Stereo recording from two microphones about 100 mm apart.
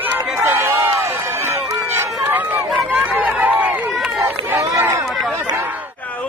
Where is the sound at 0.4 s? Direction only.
25° right (ahead or behind).